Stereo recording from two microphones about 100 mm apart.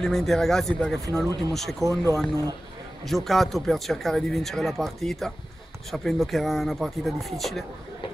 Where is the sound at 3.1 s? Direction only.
Centre (ahead or behind).